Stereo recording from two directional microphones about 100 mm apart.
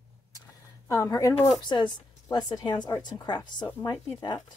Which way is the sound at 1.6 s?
50° left (ahead or behind).